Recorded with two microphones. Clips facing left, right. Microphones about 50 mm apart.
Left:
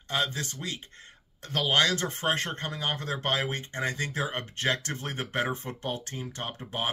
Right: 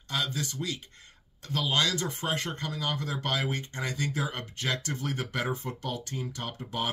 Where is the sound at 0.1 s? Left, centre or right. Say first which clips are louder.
Left 2 dB; left.